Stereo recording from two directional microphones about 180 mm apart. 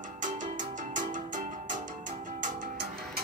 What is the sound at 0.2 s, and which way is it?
Music, 45° right (ahead or behind).